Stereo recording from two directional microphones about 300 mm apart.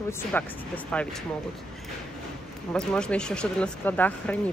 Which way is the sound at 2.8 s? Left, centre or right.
Centre.